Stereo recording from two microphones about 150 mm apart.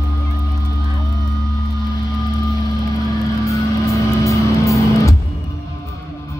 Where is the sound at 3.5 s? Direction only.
20° left (ahead or behind).